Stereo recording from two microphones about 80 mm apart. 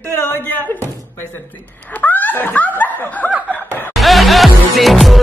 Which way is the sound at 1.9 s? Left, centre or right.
Left.